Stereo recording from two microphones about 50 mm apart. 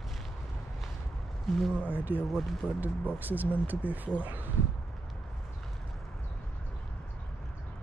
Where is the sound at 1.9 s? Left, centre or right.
Right.